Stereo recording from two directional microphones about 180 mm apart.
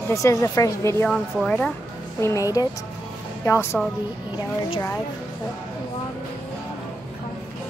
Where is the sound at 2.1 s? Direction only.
15° left (ahead or behind).